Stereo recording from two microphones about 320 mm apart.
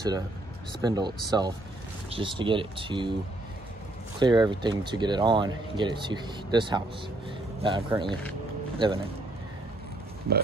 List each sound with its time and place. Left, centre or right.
0.8 s speech: centre
4.2 s speech: centre
8.1 s speech: centre
8.7 s speech: centre